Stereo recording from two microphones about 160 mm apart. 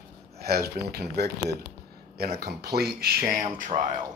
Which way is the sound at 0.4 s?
75° right (ahead or behind).